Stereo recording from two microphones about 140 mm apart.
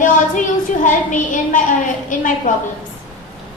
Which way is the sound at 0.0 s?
65° left (ahead or behind).